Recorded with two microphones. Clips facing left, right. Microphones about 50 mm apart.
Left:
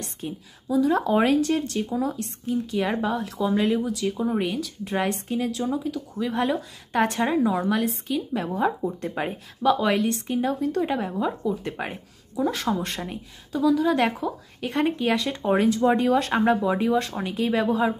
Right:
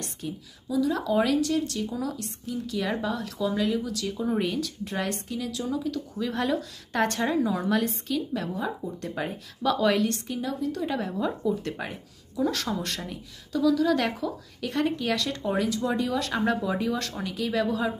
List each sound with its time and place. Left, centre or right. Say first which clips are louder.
0.0 s a woman's voice: left 2 dB; left; by 4.9 s centre
4.9 s speech: left 6 dB; left
5.9 s a woman's voice: left 2 dB; centre
8.5 s speech: left 7 dB; left
9.0 s speech: left 3 dB; left
11.0 s a woman's voice: left 2 dB; centre
15.5 s speech: left 8 dB; left